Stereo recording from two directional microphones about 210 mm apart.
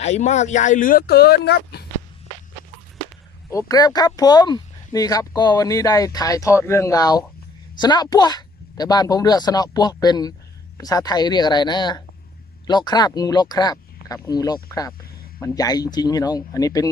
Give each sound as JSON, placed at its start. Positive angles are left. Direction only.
{"t": 0.0, "sound": "speech", "side_deg": 30}
{"t": 3.4, "sound": "speech", "side_deg": 15}